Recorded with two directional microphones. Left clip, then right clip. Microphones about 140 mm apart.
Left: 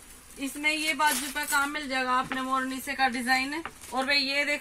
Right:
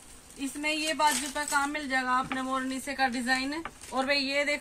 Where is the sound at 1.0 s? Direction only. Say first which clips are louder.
Even; 15° right (ahead or behind); by 4.5 s 15° left (ahead or behind).